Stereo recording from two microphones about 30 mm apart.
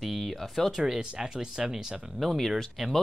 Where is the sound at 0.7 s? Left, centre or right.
Centre.